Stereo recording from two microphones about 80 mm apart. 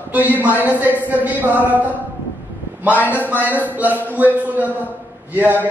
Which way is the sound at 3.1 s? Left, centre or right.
Left.